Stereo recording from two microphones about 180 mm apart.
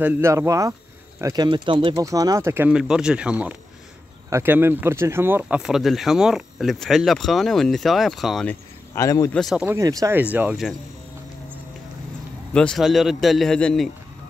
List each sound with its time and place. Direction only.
0.0 s speech: 10° right (ahead or behind)
8.5 s a man's voice: 15° left (ahead or behind)
9.3 s speech: centre (ahead or behind)
9.7 s speech: 20° right (ahead or behind); by 10.8 s centre (ahead or behind)
12.5 s speech: centre (ahead or behind)